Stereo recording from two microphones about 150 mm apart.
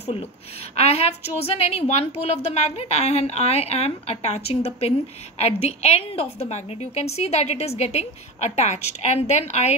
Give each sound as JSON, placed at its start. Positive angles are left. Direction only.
{"t": 0.7, "sound": "a woman's voice", "side_deg": 45}